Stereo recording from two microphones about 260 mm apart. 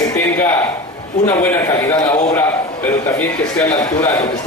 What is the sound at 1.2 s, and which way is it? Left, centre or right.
A man's voice, centre.